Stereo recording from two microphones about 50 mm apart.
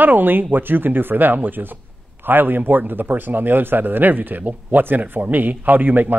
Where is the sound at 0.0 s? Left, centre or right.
Right.